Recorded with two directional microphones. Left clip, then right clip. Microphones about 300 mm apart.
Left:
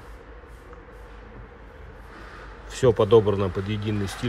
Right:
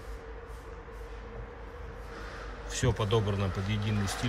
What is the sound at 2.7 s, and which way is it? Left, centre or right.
Speech, centre.